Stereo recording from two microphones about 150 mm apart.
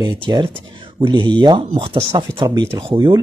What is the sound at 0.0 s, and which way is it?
Speech, 30° right (ahead or behind).